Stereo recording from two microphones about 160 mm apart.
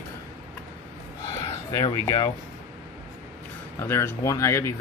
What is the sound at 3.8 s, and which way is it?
Speech, 15° left (ahead or behind).